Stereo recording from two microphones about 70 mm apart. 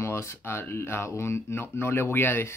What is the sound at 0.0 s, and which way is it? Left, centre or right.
Speech, left.